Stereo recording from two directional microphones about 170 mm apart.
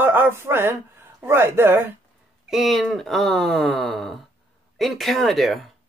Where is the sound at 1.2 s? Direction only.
15° right (ahead or behind).